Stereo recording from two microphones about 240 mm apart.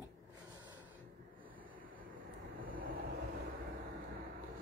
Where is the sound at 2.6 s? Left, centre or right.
Right.